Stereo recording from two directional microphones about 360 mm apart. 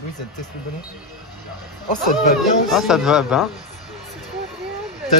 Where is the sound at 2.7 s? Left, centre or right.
Centre.